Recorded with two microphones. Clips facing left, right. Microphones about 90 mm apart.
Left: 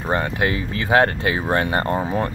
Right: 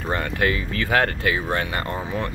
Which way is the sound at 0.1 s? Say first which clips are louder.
Left 2 dB; 25° left (ahead or behind).